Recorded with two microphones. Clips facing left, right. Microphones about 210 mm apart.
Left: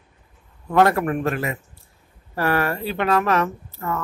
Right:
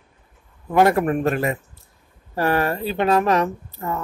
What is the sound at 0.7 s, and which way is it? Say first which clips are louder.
Speech: right 1 dB; 10° right (ahead or behind).